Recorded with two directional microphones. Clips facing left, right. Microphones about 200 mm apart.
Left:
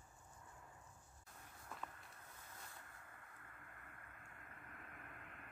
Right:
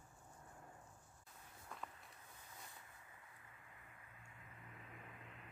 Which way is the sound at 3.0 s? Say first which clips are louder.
Left 2 dB; 55° left (ahead or behind).